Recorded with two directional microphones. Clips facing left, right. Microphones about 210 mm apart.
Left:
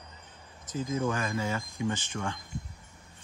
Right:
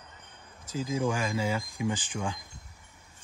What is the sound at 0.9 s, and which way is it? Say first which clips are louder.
Speech: right 1 dB; 10° right (ahead or behind).